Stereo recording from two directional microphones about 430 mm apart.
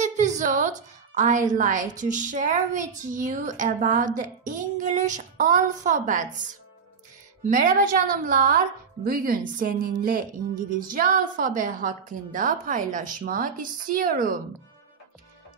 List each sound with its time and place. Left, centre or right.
0.0 s a woman's voice: centre
7.4 s a woman's voice: centre